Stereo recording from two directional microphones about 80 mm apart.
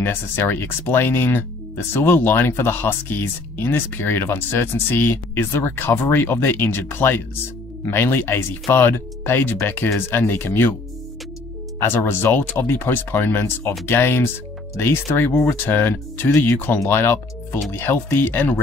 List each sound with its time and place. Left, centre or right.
0.0 s speech: left
11.8 s speech: left